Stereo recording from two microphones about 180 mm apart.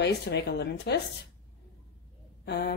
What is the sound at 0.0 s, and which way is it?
Speech, 70° left (ahead or behind).